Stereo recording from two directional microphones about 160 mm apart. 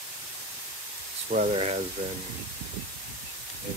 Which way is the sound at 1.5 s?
40° right (ahead or behind).